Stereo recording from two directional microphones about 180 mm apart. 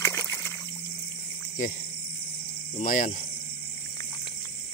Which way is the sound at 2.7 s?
50° left (ahead or behind).